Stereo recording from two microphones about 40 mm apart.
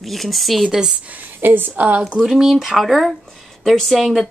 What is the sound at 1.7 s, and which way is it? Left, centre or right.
Speech, right.